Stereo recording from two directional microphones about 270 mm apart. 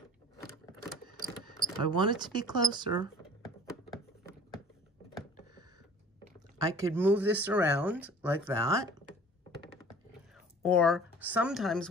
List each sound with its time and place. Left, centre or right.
0.8 s a sound: left
2.0 s speech: centre
6.6 s speech: centre
10.6 s speech: centre